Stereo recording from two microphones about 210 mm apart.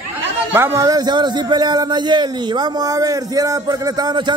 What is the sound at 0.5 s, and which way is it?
A man's voice, 10° right (ahead or behind).